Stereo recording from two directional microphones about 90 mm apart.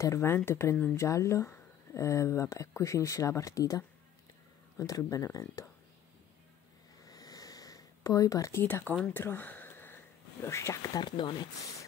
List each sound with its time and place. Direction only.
0.0 s speech: 30° left (ahead or behind)
7.1 s a sound: 45° left (ahead or behind)
9.0 s speech: 20° left (ahead or behind); by 11.4 s 55° left (ahead or behind)